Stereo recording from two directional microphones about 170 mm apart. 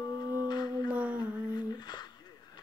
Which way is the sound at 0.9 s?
10° right (ahead or behind).